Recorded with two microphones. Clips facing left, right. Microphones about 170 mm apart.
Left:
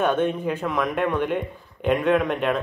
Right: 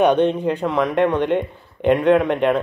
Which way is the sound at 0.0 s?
20° right (ahead or behind).